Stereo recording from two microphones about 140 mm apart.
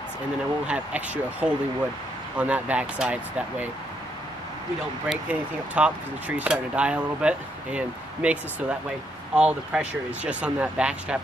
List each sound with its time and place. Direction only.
0.7 s speech: 10° right (ahead or behind)
5.0 s speech: 10° right (ahead or behind)